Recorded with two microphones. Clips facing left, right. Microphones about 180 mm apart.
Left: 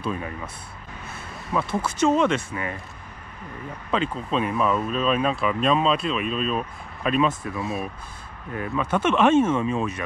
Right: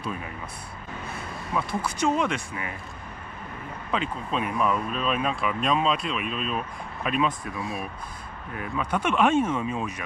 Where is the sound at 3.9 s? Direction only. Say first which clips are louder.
Left 4 dB; 30° left (ahead or behind).